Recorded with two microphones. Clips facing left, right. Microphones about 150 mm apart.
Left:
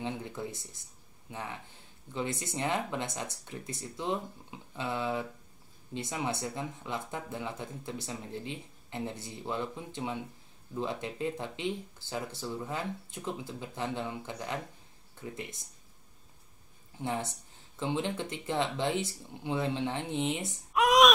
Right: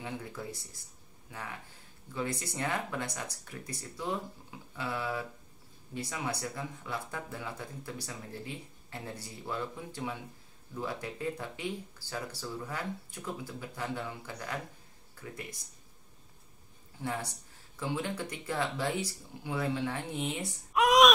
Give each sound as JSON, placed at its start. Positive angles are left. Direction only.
{"t": 0.0, "sound": "speech", "side_deg": 20}
{"t": 17.0, "sound": "speech", "side_deg": 20}
{"t": 20.7, "sound": "a sound", "side_deg": 0}